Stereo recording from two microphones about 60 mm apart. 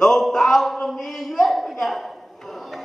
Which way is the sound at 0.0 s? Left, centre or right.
Centre.